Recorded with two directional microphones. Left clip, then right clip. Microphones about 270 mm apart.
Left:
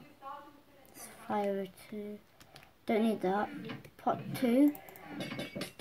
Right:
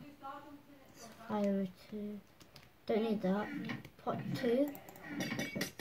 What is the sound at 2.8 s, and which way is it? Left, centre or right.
Speech, left.